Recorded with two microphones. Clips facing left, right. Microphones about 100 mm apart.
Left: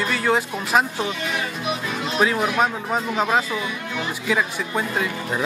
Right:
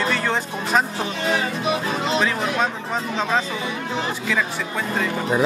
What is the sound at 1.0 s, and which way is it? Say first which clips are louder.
Speech: right 3 dB; 35° right (ahead or behind).